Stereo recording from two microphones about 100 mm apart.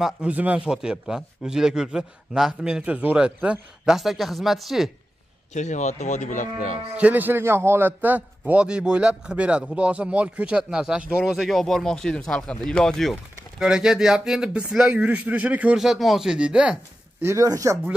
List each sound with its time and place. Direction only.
0.0 s a man's voice: 10° right (ahead or behind)
7.0 s a man's voice: 15° right (ahead or behind); by 13.7 s 5° left (ahead or behind)
13.7 s a man's voice: 5° right (ahead or behind)
15.8 s speech: centre (ahead or behind)
17.2 s speech: 30° right (ahead or behind)